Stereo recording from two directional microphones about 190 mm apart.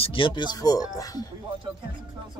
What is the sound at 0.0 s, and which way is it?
Speech, 25° left (ahead or behind).